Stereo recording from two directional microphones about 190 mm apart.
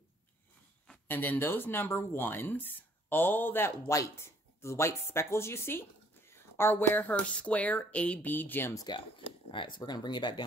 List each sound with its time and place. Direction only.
0.8 s speech: 10° left (ahead or behind)